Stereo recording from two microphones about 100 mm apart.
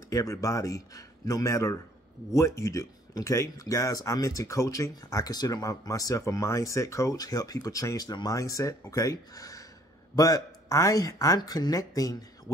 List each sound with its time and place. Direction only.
0.1 s speech: 35° left (ahead or behind)